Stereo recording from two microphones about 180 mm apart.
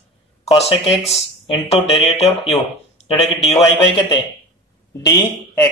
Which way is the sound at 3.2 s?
Centre (ahead or behind).